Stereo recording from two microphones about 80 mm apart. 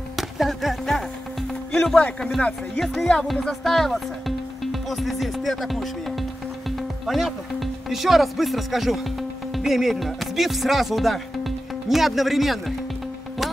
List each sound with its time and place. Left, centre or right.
0.1 s music: centre
1.7 s speech: centre
2.8 s speech: centre
9.6 s music: centre